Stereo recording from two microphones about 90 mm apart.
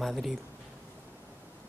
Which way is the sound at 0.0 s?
Centre (ahead or behind).